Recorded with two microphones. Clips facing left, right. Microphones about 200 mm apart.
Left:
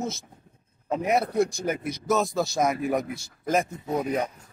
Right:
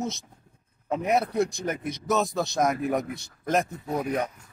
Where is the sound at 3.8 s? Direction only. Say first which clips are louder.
Left 1 dB; 20° left (ahead or behind).